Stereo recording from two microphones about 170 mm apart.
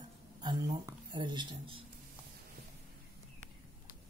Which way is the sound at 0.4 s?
25° right (ahead or behind).